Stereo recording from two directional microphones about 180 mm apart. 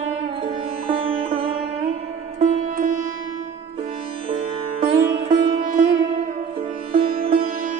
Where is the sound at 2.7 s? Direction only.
45° right (ahead or behind).